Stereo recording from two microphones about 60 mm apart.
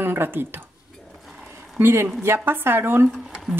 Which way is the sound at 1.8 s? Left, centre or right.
Right.